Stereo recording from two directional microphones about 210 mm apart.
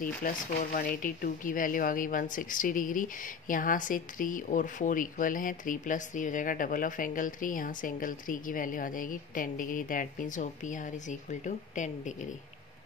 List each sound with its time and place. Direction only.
0.0 s speech: 40° left (ahead or behind)